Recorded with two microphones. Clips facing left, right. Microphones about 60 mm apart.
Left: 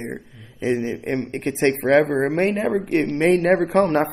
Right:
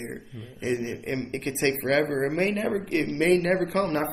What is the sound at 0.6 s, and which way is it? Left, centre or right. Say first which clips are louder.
A man's voice: left 6 dB; left.